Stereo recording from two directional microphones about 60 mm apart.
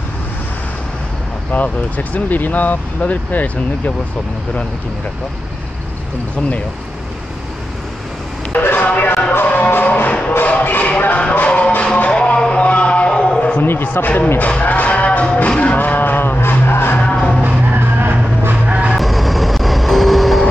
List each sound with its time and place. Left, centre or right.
1.5 s speech: left
8.5 s a sound: left
9.3 s music: left
10.4 s speech: left
11.3 s music: centre
12.1 s a sound: centre
13.6 s a sound: left
14.0 s speech: left
14.5 s music: left
17.0 s music: centre
17.7 s music: right
18.9 s vehicle: centre